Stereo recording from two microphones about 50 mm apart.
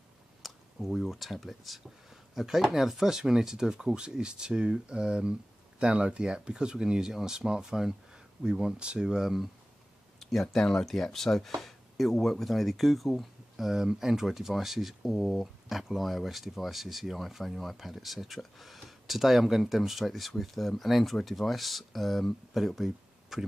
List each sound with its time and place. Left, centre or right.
0.4 s a sound: centre
1.1 s speech: centre
9.2 s speech: centre
10.2 s speech: centre